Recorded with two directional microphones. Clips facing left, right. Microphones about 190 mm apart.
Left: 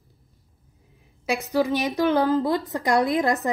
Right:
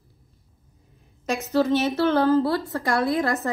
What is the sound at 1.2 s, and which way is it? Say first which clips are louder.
A woman's voice: right 1 dB; 10° left (ahead or behind).